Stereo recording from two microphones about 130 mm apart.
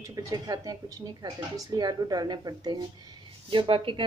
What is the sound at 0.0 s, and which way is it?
Speech, 25° right (ahead or behind).